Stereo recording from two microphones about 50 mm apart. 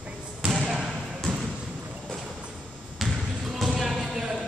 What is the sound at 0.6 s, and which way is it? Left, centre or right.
Basketball bounce, centre.